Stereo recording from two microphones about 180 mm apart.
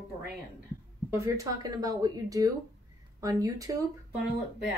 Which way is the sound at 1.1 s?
15° right (ahead or behind).